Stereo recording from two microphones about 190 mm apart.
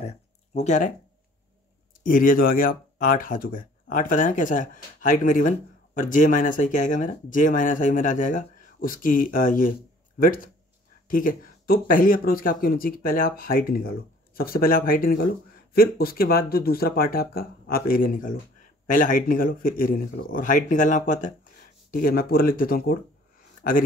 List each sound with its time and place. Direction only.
0.6 s speech: 40° left (ahead or behind)
2.0 s speech: 45° left (ahead or behind)